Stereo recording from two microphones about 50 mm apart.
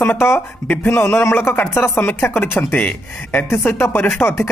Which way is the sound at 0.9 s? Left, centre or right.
Left.